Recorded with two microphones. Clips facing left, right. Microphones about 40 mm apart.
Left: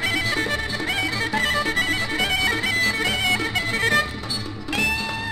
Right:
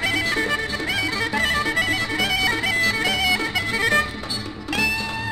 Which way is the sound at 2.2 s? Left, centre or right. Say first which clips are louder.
Even; left.